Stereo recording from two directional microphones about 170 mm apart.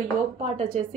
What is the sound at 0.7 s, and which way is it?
Speech, 45° right (ahead or behind).